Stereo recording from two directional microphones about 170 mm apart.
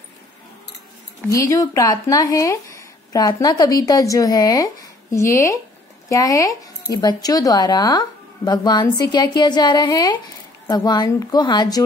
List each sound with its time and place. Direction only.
1.3 s speech: 20° left (ahead or behind)